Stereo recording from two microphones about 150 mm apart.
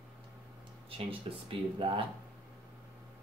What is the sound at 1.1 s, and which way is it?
Speech, 40° right (ahead or behind).